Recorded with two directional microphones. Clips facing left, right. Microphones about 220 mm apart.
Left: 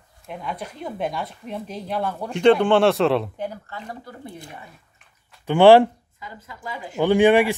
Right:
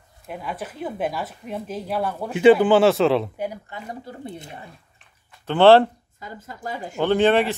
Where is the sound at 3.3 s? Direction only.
10° right (ahead or behind).